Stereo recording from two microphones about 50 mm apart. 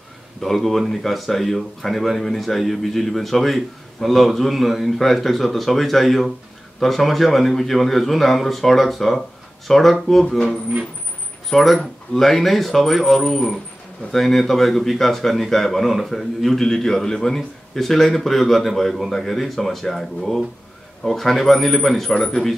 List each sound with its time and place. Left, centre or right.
0.4 s a man's voice: centre
11.5 s a man's voice: centre